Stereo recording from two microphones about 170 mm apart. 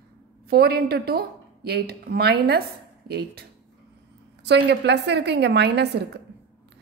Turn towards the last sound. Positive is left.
turn(degrees=-80)